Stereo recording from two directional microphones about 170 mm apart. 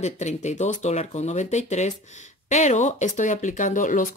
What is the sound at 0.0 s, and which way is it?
Speech, 40° left (ahead or behind).